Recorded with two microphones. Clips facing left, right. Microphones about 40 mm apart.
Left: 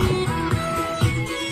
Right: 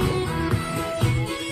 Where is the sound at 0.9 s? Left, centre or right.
Left.